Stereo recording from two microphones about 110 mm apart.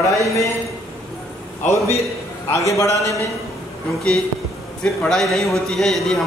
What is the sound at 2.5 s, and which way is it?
Speech, 30° left (ahead or behind).